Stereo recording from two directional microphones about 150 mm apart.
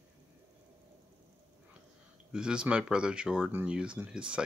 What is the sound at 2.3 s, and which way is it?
Speech, 5° right (ahead or behind).